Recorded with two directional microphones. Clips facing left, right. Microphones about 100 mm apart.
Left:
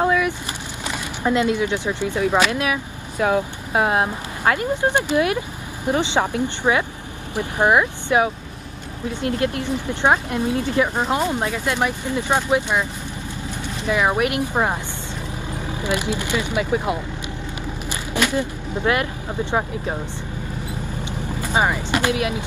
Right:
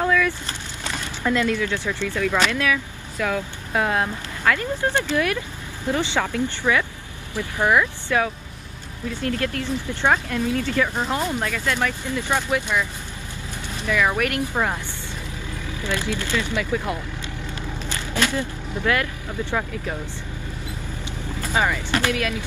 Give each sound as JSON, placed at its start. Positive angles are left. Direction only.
{"t": 0.0, "sound": "vehicle", "side_deg": 25}
{"t": 0.8, "sound": "speech", "side_deg": 20}
{"t": 13.8, "sound": "speech", "side_deg": 25}
{"t": 21.0, "sound": "vehicle", "side_deg": 20}